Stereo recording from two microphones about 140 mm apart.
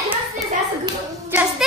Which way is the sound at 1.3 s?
10° right (ahead or behind).